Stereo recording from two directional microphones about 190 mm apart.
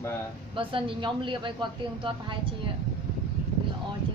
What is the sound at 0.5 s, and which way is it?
A woman's voice, 25° right (ahead or behind).